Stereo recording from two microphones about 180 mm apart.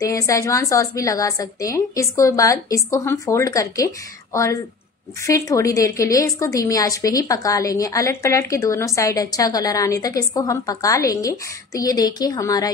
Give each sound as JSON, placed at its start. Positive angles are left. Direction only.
{"t": 0.0, "sound": "a woman's voice", "side_deg": 15}